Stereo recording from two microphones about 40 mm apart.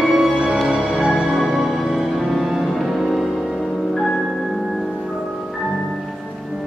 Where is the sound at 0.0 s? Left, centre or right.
Centre.